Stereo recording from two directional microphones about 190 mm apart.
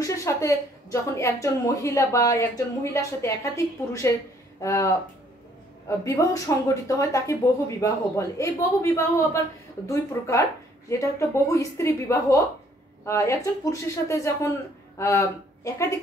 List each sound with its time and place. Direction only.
0.0 s a woman's voice: 15° left (ahead or behind)